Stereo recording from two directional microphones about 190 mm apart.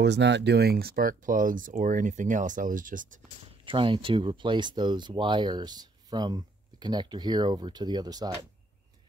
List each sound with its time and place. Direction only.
0.0 s speech: 65° right (ahead or behind); by 3.2 s 45° right (ahead or behind)
3.6 s speech: 25° right (ahead or behind)